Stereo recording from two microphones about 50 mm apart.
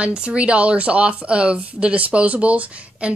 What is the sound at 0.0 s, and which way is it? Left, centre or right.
A woman's voice, right.